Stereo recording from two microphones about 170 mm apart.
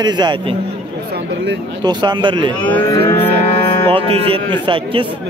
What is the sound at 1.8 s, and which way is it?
Speech, 25° right (ahead or behind).